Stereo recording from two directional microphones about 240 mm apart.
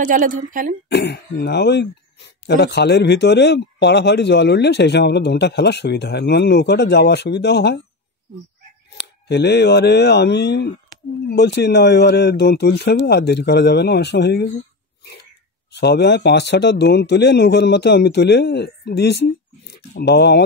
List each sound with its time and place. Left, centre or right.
0.0 s a woman's voice: right
0.8 s speech: left
8.9 s speech: left
15.7 s speech: left